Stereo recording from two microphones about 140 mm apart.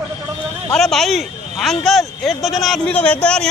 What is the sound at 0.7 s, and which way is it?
A man's voice, centre (ahead or behind).